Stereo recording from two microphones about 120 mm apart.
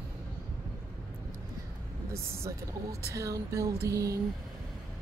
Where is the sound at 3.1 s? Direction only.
25° right (ahead or behind).